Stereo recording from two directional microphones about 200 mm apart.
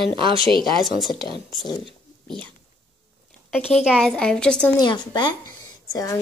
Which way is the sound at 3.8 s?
Centre (ahead or behind).